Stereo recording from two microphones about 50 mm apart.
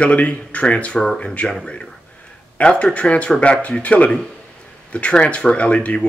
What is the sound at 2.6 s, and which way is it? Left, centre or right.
Speech, left.